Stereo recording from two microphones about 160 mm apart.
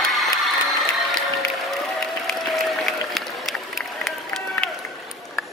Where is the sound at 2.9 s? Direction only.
Centre (ahead or behind).